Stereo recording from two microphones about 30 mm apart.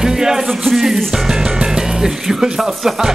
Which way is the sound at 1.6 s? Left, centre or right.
Right.